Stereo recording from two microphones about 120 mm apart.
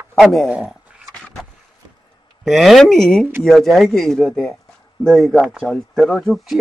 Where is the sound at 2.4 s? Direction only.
Centre (ahead or behind).